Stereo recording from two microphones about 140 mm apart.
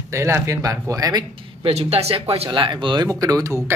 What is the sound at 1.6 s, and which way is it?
Speech, 45° right (ahead or behind).